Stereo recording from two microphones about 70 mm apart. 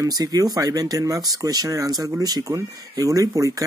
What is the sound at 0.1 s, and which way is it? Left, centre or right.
Speech, right.